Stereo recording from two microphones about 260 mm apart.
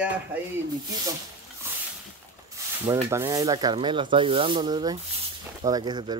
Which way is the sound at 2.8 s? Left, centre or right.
Centre.